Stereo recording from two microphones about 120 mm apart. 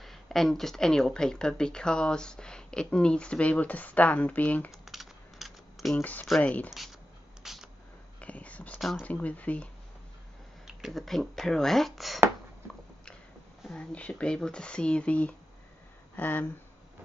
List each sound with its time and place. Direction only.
0.0 s speech: centre (ahead or behind)
4.8 s typing: centre (ahead or behind)
5.9 s speech: 15° left (ahead or behind)
7.4 s a sound: 5° right (ahead or behind)
8.2 s whispering: 10° left (ahead or behind)
8.7 s a sound: 5° right (ahead or behind)
9.0 s speech: 10° left (ahead or behind)
10.8 s speech: centre (ahead or behind)
13.7 s speech: 10° left (ahead or behind)